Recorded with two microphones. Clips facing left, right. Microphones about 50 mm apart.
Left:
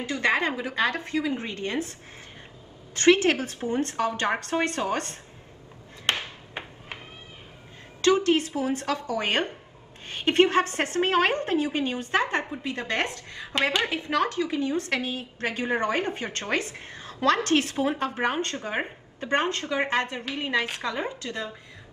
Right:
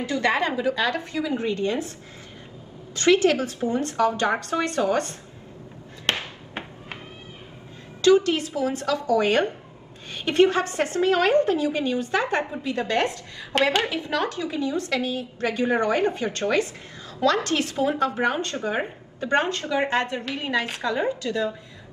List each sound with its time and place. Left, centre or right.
0.0 s a woman's voice: left
2.9 s a woman's voice: left
6.1 s music: right
8.0 s a woman's voice: left
13.6 s a woman's voice: right
13.8 s a woman's voice: left